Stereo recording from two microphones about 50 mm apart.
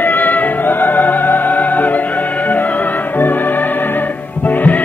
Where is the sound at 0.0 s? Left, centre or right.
Left.